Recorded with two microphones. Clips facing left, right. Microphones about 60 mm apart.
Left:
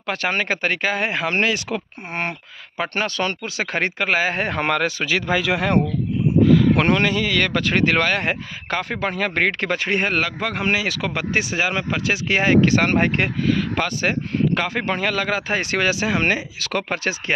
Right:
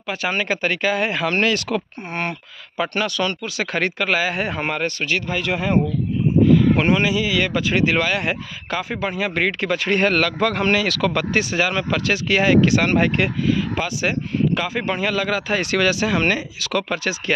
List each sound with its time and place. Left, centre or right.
0.0 s speech: left
2.8 s speech: left
4.4 s a man's voice: left
6.4 s speech: left
9.8 s speech: left
12.4 s speech: left
13.5 s speech: left
16.5 s speech: left